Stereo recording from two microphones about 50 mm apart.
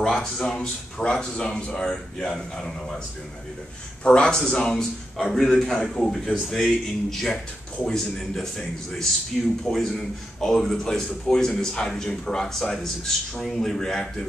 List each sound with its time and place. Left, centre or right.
0.0 s a sound: centre
0.4 s speech: centre
4.0 s a man's voice: centre